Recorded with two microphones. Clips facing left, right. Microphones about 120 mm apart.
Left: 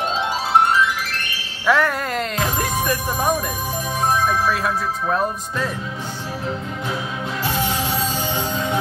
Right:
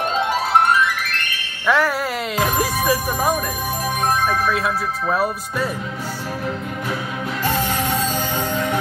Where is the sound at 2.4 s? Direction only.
5° right (ahead or behind).